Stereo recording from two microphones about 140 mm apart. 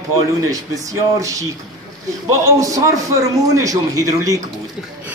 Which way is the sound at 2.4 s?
25° right (ahead or behind).